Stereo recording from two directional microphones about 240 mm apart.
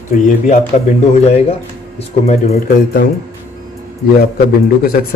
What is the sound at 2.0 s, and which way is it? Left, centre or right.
Speech, left.